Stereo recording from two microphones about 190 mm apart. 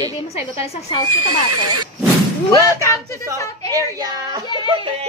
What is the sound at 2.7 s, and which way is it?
Speech, 15° left (ahead or behind).